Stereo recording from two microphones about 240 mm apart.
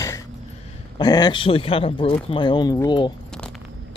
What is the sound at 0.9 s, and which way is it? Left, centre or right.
Speech, centre.